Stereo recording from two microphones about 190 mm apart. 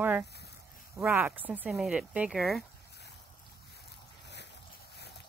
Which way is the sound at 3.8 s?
65° left (ahead or behind).